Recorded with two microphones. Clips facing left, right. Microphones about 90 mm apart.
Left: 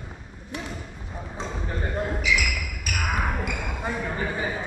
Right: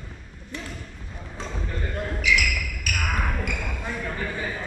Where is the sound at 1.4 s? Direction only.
15° left (ahead or behind).